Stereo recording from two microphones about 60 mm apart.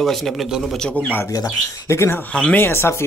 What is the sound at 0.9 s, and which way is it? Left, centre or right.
Speech, left.